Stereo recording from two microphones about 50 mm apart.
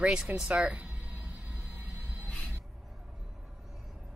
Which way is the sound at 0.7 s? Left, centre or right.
Right.